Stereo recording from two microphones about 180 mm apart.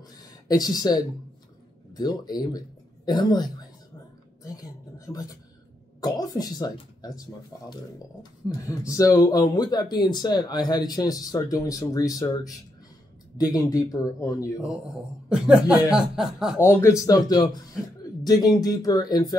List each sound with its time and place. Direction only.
0.5 s speech: 20° left (ahead or behind)
13.4 s speech: 20° left (ahead or behind)
15.2 s speech: 5° right (ahead or behind)
16.6 s speech: 15° left (ahead or behind)